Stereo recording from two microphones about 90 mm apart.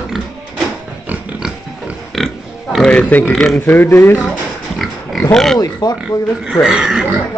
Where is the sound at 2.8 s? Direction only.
15° left (ahead or behind).